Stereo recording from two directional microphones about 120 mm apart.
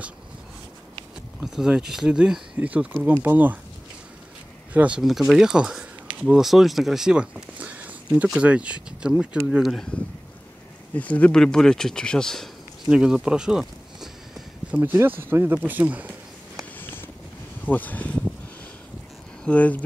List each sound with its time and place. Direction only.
1.4 s speech: 5° right (ahead or behind)
4.7 s speech: 10° right (ahead or behind)
11.0 s speech: 10° left (ahead or behind)
12.9 s a sound: 5° right (ahead or behind)
14.8 s speech: 20° right (ahead or behind)
17.6 s speech: 15° left (ahead or behind)
19.4 s speech: 10° left (ahead or behind)